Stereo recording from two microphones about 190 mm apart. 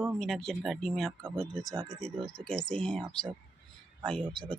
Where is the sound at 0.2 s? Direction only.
Centre (ahead or behind).